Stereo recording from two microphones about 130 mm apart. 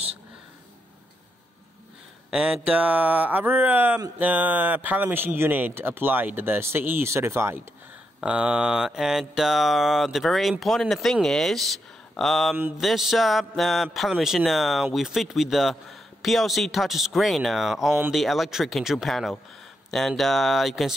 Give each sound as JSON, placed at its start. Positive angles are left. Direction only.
{"t": 2.3, "sound": "speech", "side_deg": -5}
{"t": 8.2, "sound": "speech", "side_deg": -10}